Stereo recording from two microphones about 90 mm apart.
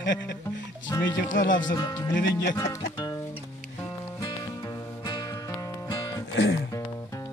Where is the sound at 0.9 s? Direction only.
40° left (ahead or behind).